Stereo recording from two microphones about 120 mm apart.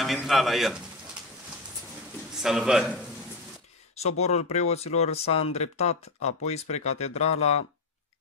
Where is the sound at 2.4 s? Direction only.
5° right (ahead or behind).